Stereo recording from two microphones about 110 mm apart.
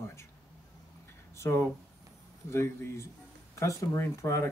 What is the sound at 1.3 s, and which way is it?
Speech, 25° left (ahead or behind).